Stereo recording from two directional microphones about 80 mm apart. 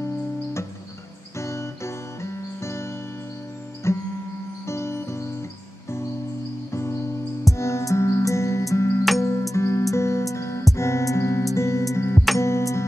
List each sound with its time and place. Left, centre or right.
0.0 s music: left
6.7 s music: left